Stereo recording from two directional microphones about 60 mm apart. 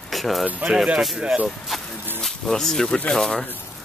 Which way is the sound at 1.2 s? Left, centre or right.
Centre.